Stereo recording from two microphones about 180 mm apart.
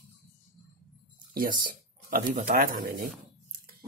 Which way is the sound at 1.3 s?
50° right (ahead or behind).